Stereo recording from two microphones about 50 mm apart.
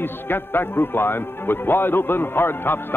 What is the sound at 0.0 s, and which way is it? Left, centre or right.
A man's voice, left.